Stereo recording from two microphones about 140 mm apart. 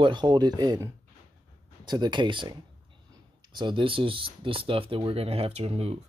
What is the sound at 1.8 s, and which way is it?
Speech, 30° right (ahead or behind).